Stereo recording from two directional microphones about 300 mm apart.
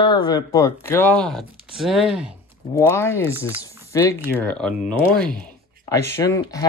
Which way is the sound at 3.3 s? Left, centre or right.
Centre.